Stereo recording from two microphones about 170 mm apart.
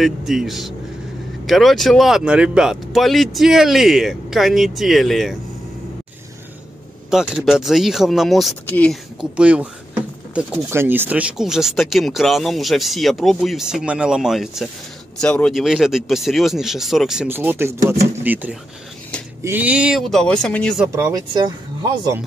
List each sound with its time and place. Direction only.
0.0 s speech: centre (ahead or behind)
7.1 s speech: 5° right (ahead or behind)
9.2 s speech: 5° right (ahead or behind)
20.8 s speech: 15° right (ahead or behind)